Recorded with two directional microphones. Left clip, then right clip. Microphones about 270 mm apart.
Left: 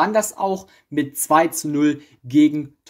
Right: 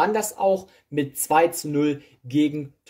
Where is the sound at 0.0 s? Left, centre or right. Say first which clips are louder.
Left 2 dB; left.